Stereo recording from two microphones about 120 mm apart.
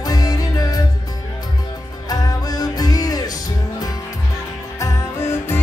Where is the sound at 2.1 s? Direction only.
30° left (ahead or behind).